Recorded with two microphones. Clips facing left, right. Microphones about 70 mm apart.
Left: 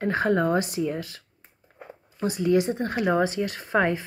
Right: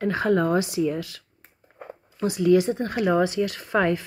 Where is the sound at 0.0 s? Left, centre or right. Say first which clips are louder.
Right 1 dB; left.